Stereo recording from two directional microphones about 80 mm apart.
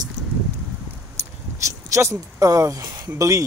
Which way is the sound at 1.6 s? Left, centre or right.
Right.